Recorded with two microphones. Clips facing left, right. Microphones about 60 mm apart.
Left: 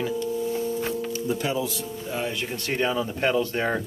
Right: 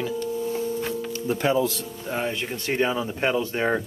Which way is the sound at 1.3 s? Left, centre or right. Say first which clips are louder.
Right 6 dB; right.